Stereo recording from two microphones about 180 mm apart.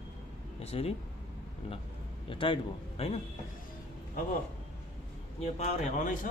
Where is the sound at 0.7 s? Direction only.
35° left (ahead or behind).